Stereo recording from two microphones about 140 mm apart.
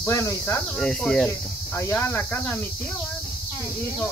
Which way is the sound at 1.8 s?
15° left (ahead or behind).